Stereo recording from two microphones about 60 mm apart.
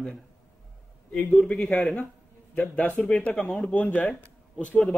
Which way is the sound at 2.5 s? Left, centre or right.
Left.